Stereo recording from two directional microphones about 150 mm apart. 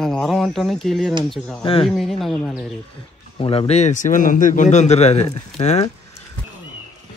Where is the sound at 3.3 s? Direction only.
40° left (ahead or behind).